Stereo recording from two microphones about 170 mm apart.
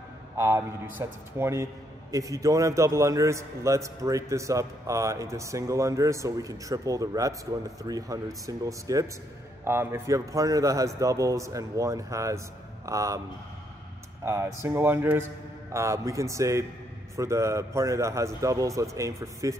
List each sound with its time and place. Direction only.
0.4 s a man's voice: 15° right (ahead or behind)
14.2 s a man's voice: 15° right (ahead or behind)